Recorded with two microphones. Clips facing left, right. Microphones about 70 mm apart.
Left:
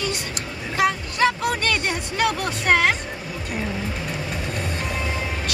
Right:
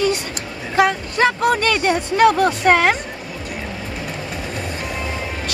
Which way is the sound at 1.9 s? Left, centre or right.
Right.